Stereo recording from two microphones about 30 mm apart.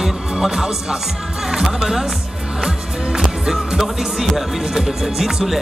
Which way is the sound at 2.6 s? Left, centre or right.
Centre.